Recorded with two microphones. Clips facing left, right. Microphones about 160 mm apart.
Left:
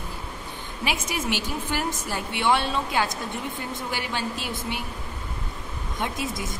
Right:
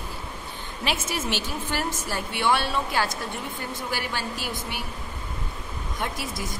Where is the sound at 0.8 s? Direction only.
15° left (ahead or behind).